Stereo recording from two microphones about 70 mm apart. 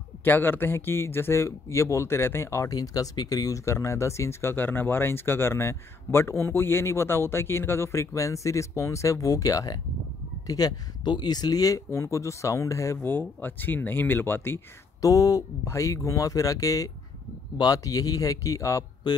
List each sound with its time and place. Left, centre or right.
0.2 s speech: left
2.7 s speech: left
11.9 s speech: left
13.4 s speech: left
15.0 s speech: left